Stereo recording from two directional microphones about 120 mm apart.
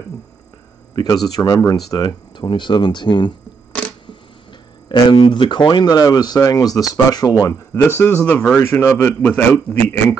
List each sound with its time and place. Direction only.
0.9 s speech: 35° left (ahead or behind)
4.8 s speech: 45° left (ahead or behind); by 9.9 s 15° left (ahead or behind)